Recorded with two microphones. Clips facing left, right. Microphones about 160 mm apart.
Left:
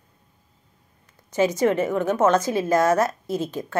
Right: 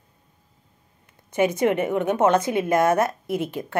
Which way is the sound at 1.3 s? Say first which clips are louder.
Even; 60° right (ahead or behind).